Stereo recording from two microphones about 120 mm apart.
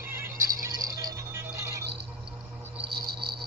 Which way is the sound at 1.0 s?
30° right (ahead or behind).